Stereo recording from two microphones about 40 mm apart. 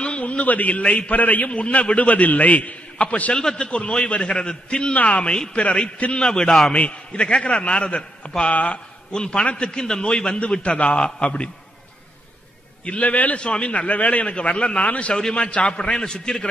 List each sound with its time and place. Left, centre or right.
0.0 s a man's voice: left
1.1 s a man's voice: left
3.3 s a man's voice: left
6.1 s a man's voice: left
9.1 s a man's voice: left
12.8 s a man's voice: left; by 16.4 s centre